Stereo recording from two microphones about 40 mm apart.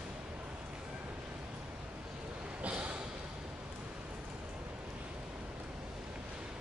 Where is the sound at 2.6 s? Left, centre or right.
Right.